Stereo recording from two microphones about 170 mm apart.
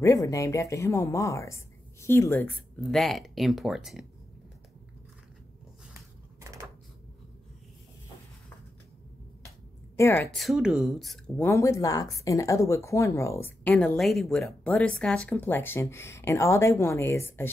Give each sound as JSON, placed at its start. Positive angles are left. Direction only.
{"t": 0.0, "sound": "speech", "side_deg": 20}
{"t": 2.8, "sound": "speech", "side_deg": 0}
{"t": 5.9, "sound": "a sound", "side_deg": -20}
{"t": 9.9, "sound": "a woman's voice", "side_deg": 15}
{"t": 10.3, "sound": "speech", "side_deg": 0}
{"t": 11.3, "sound": "speech", "side_deg": 15}